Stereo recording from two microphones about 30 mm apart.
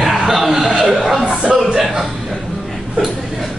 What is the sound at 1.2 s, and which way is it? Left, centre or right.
Speech, right.